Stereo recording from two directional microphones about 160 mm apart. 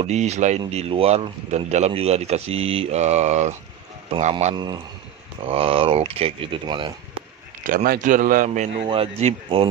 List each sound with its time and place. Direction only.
0.0 s speech: 45° right (ahead or behind)
4.6 s a man's voice: 25° right (ahead or behind)
7.6 s a man's voice: 65° right (ahead or behind)
8.8 s speech: 35° right (ahead or behind)